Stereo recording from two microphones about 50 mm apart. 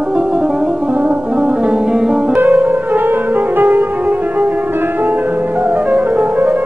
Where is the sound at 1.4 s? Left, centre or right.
Centre.